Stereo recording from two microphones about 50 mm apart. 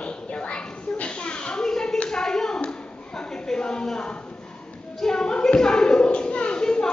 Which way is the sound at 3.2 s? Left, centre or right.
Centre.